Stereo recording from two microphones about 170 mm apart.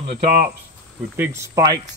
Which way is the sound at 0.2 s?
60° right (ahead or behind).